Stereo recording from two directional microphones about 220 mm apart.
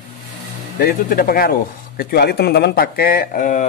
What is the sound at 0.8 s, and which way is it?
Speech, 40° left (ahead or behind).